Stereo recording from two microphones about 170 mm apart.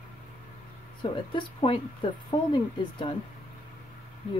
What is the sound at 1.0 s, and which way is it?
Speech, 30° left (ahead or behind).